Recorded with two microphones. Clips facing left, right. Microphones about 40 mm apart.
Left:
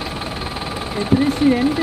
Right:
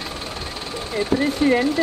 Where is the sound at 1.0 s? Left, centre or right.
Centre.